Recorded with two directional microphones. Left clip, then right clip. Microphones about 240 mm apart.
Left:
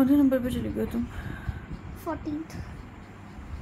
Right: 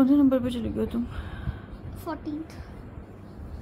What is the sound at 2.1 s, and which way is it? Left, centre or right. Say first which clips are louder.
Speech: left 1 dB; centre.